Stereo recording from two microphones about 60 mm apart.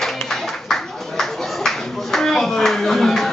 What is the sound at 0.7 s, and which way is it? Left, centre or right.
Clapping, centre.